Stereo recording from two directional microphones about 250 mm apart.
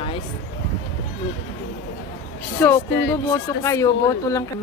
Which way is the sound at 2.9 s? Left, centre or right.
Left.